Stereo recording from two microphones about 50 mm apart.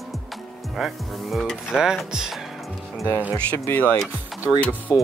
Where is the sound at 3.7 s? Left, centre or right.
Left.